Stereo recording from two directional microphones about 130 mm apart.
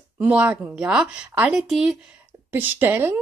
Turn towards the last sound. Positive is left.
turn(degrees=-15)  # may be behind; listen again after turning